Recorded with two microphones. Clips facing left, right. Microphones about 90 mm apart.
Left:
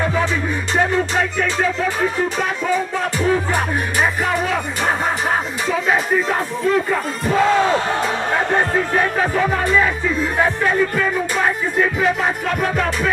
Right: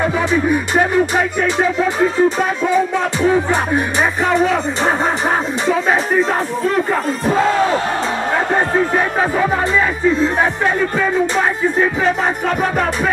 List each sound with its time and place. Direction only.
0.0 s music: 10° right (ahead or behind)
3.2 s music: 20° right (ahead or behind)
8.5 s music: 15° right (ahead or behind)